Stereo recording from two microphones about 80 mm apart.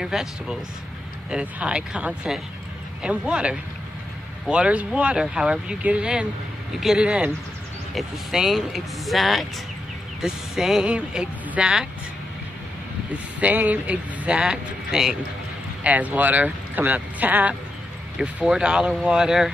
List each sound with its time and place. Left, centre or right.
0.0 s speech: centre
13.4 s speech: centre
15.8 s speech: centre